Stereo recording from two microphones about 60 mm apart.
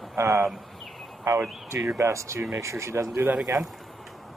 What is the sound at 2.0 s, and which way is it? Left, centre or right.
Speech, right.